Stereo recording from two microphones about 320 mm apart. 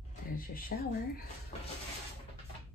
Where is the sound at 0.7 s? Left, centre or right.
Left.